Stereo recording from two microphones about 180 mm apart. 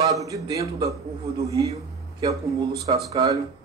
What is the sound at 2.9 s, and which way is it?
Speech, 30° right (ahead or behind).